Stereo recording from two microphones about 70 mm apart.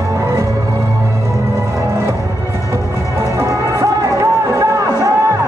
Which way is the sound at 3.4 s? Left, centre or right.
Right.